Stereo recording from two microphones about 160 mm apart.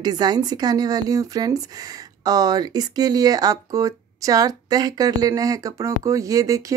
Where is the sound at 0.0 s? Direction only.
25° right (ahead or behind).